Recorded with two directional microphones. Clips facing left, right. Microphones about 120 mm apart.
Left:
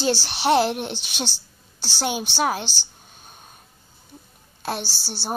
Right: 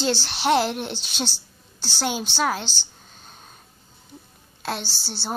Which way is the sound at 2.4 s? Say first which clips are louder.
Left 1 dB; 15° left (ahead or behind).